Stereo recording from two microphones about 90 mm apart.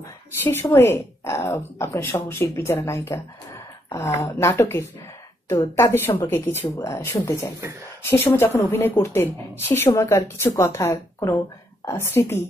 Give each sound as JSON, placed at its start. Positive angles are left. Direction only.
{"t": 0.4, "sound": "speech", "side_deg": 25}